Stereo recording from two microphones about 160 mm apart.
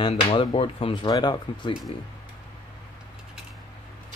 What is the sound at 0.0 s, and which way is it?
Speech, 35° left (ahead or behind).